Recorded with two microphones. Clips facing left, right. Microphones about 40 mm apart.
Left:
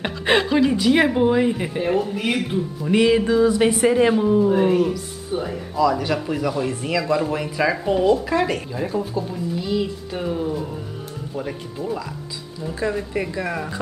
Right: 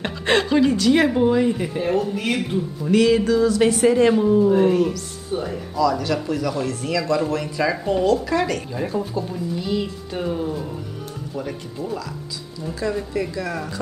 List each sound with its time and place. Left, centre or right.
0.0 s a woman's voice: centre
2.9 s a woman's voice: centre
5.8 s a woman's voice: centre
8.7 s a woman's voice: centre
12.9 s a woman's voice: left